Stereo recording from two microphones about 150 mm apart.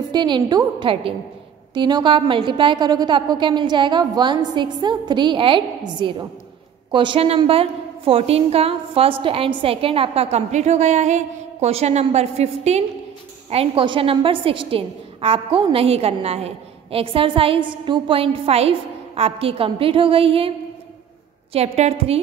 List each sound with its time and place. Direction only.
0.1 s a woman's voice: 30° right (ahead or behind)
21.5 s a woman's voice: 45° right (ahead or behind)